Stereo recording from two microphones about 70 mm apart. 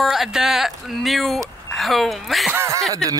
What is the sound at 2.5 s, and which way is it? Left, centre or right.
Speech, right.